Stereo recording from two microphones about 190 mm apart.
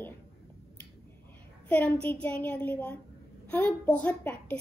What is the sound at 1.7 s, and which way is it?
A woman's voice, 5° left (ahead or behind).